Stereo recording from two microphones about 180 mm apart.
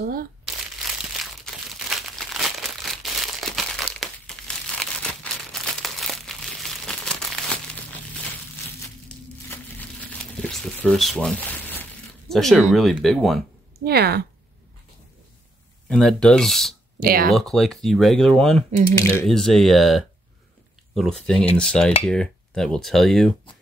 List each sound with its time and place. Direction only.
0.0 s speech: 55° right (ahead or behind)
1.2 s crumpling: centre (ahead or behind)
10.3 s crumpling: 5° left (ahead or behind)
12.3 s speech: centre (ahead or behind)
13.8 s speech: 60° right (ahead or behind)
15.9 s speech: 5° left (ahead or behind)
17.0 s speech: 55° right (ahead or behind)
17.3 s speech: centre (ahead or behind)
18.9 s speech: 15° left (ahead or behind)
19.2 s speech: centre (ahead or behind)